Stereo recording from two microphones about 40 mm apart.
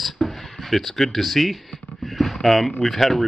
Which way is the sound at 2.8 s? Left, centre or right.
Centre.